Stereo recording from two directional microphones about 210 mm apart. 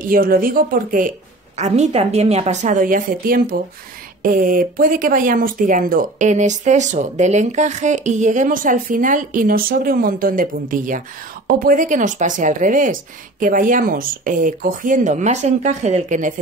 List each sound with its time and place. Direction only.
0.0 s a woman's voice: 45° right (ahead or behind)
1.6 s speech: 30° right (ahead or behind)